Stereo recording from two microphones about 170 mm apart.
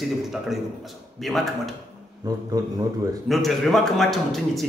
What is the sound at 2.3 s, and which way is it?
Speech, 20° right (ahead or behind).